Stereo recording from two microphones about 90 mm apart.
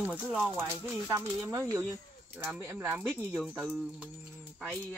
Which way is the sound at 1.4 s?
35° right (ahead or behind).